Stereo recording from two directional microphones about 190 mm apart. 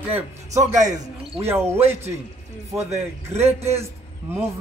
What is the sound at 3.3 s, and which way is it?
Speech, 35° right (ahead or behind).